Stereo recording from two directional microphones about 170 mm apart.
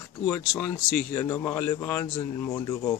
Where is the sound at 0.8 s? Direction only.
5° right (ahead or behind).